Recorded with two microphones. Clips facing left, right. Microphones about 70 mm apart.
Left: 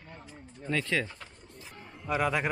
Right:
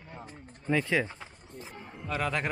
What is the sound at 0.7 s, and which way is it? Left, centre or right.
Speech, centre.